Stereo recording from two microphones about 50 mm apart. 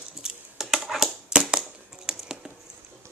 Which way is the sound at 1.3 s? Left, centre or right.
Centre.